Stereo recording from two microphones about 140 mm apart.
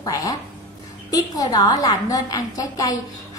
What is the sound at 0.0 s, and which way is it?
A woman's voice, 25° left (ahead or behind).